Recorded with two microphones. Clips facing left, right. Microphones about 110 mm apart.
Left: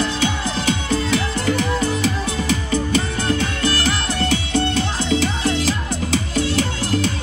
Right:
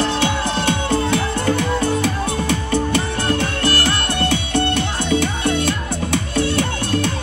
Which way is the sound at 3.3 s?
55° right (ahead or behind).